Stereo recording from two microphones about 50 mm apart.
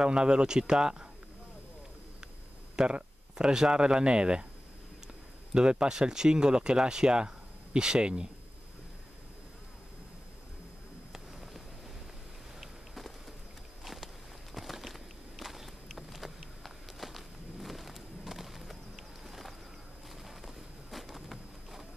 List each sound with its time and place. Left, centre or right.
0.0 s speech: centre
2.7 s speech: centre
5.5 s speech: centre
12.5 s a sound: centre
13.8 s walk: centre
16.0 s a sound: centre